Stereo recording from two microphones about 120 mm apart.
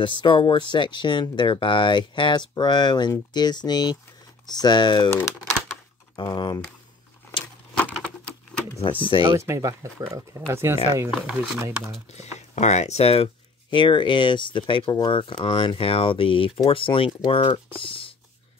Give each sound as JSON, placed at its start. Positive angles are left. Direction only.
{"t": 0.0, "sound": "speech", "side_deg": 40}
{"t": 6.1, "sound": "speech", "side_deg": 40}
{"t": 7.9, "sound": "a sound", "side_deg": 10}
{"t": 8.7, "sound": "speech", "side_deg": 45}
{"t": 9.5, "sound": "speech", "side_deg": -25}
{"t": 11.1, "sound": "speech", "side_deg": -5}
{"t": 11.5, "sound": "speech", "side_deg": -25}
{"t": 12.1, "sound": "speech", "side_deg": 70}